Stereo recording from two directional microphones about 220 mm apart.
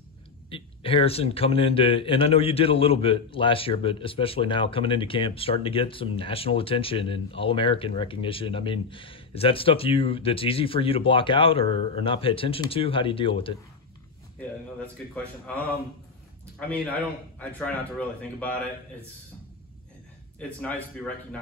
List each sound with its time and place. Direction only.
0.5 s a man's voice: 25° left (ahead or behind)
14.4 s a man's voice: 5° left (ahead or behind)
20.3 s a man's voice: 5° left (ahead or behind)